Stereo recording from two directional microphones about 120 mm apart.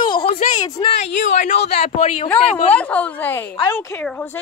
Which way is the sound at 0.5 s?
30° left (ahead or behind).